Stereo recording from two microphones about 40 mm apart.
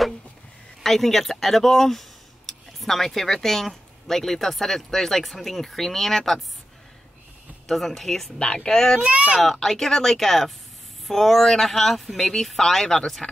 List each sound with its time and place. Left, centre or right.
0.8 s speech: centre
7.6 s speech: centre
9.0 s speech: right
9.4 s speech: centre